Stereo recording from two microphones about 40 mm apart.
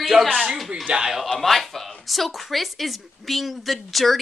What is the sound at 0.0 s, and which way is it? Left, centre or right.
Speech, centre.